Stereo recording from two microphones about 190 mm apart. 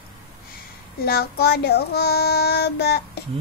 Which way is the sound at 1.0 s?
55° left (ahead or behind).